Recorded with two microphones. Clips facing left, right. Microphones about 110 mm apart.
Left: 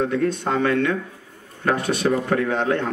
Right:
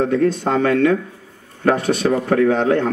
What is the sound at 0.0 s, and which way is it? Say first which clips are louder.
Speech: right 5 dB; 35° right (ahead or behind).